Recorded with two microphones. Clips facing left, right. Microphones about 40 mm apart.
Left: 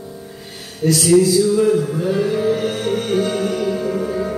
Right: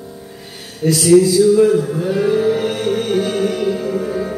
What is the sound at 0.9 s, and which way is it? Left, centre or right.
Music, centre.